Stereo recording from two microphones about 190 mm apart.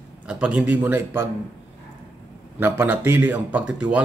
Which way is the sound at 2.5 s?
10° right (ahead or behind).